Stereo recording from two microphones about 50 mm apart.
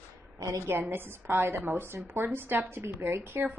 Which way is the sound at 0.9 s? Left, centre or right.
Right.